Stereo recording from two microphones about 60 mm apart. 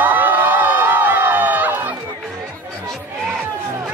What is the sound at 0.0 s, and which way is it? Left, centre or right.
Crowd, right.